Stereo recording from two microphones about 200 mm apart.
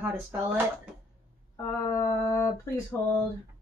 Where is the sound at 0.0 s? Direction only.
10° right (ahead or behind).